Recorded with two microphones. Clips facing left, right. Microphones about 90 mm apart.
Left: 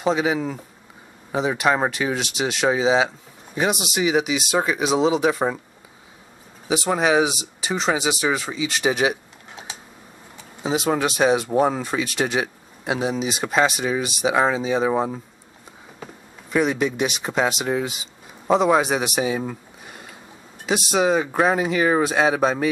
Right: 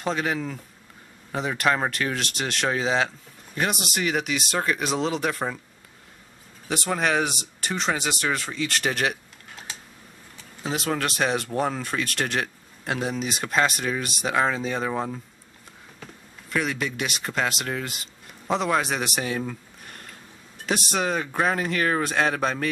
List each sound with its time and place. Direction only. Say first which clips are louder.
0.0 s speech: left 5 dB; 5° left (ahead or behind)
6.7 s speech: left 5 dB; 5° left (ahead or behind)